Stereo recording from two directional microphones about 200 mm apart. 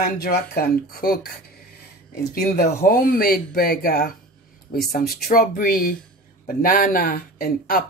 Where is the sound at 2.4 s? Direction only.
45° left (ahead or behind).